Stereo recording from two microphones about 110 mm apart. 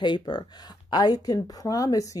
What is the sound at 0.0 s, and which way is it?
Speech, 40° left (ahead or behind).